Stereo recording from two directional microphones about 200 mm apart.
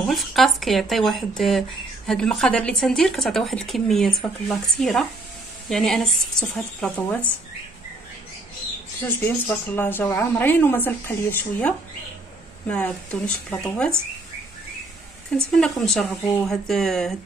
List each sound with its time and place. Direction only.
0.1 s speech: centre (ahead or behind)
9.2 s a woman's voice: 10° left (ahead or behind)
15.3 s speech: centre (ahead or behind)